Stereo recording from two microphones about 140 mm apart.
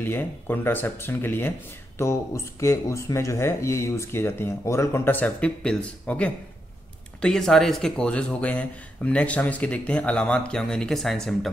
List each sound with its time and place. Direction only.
0.0 s speech: 15° left (ahead or behind)